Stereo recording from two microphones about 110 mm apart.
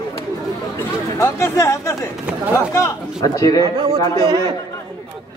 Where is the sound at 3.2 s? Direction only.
30° left (ahead or behind).